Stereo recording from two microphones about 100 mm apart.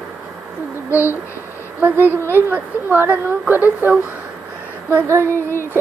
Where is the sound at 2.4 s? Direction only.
20° right (ahead or behind).